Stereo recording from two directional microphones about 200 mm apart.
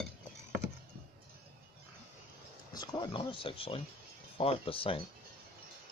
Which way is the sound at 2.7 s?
20° left (ahead or behind).